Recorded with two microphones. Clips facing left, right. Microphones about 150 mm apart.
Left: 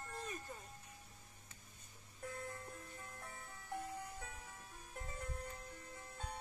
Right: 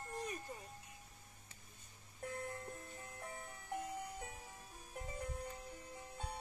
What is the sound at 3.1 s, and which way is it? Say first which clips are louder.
Music: right 3 dB; 20° right (ahead or behind).